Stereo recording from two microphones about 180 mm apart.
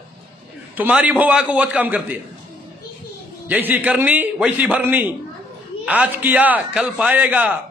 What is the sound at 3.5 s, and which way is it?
A man's voice, 10° right (ahead or behind).